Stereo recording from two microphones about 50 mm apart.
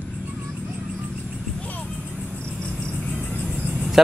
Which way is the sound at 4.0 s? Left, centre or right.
Centre.